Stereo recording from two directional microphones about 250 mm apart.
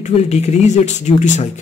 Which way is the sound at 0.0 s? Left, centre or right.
Left.